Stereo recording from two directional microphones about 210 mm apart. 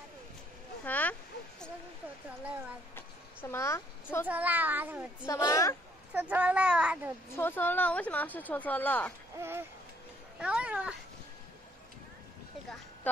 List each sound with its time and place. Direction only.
0.8 s a sound: 10° left (ahead or behind)
3.3 s speech: 10° left (ahead or behind)
4.3 s speech: 10° right (ahead or behind)
5.2 s a woman's voice: 15° left (ahead or behind)
6.1 s speech: 5° right (ahead or behind)
7.3 s a woman's voice: 10° left (ahead or behind)
9.4 s speech: 10° right (ahead or behind)
12.6 s a sound: 5° left (ahead or behind)